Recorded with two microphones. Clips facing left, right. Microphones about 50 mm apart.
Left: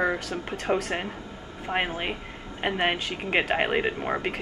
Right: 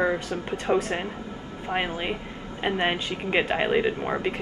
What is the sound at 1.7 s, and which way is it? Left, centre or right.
A man's voice, centre.